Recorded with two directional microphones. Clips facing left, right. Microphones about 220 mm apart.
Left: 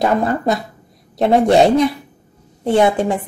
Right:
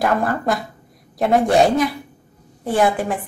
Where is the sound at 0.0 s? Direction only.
20° left (ahead or behind).